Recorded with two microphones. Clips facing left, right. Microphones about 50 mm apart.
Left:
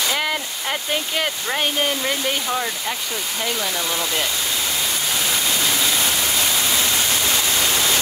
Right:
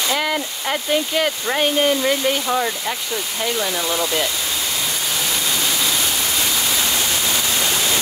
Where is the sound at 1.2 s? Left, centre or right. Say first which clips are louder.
Right 3 dB; centre.